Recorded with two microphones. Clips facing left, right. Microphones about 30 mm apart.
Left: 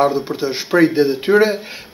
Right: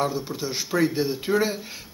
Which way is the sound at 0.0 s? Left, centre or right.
Left.